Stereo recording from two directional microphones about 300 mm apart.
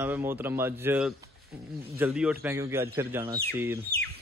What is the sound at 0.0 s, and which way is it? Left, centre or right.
Speech, centre.